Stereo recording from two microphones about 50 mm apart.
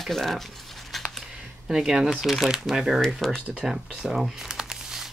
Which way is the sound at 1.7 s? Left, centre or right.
Centre.